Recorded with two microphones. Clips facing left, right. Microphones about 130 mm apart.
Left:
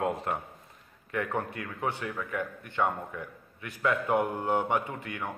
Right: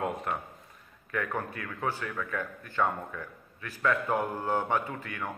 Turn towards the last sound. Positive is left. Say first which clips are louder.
# even
turn(degrees=20)  # may be behind; listen again after turning